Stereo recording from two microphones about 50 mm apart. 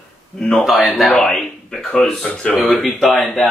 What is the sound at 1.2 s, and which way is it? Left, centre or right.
A man's voice, centre.